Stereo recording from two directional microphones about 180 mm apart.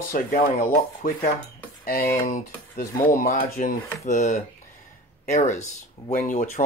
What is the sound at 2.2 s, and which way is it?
Speech, 50° left (ahead or behind).